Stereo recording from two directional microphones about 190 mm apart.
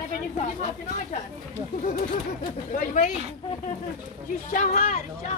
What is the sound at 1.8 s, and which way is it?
Speech, 45° left (ahead or behind).